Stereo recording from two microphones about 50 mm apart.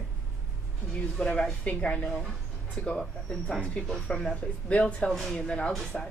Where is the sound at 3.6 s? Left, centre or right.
Left.